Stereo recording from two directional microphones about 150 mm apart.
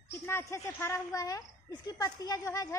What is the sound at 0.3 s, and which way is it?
A woman's voice, 20° left (ahead or behind).